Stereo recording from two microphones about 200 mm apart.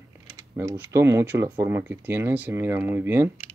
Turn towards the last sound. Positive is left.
turn(degrees=-10)  # may be behind; listen again after turning